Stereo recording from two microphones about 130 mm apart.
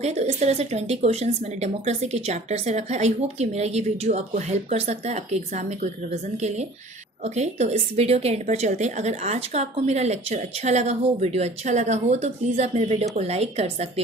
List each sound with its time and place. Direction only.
0.0 s a woman's voice: 60° right (ahead or behind)
7.3 s a woman's voice: 55° right (ahead or behind)